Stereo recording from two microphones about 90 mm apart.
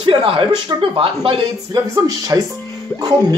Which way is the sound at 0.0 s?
80° right.